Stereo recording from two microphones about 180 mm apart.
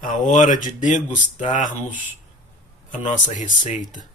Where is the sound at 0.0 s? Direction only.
45° left (ahead or behind).